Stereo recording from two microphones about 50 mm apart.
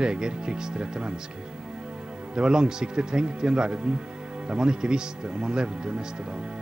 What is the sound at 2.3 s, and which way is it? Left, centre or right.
Speech, centre.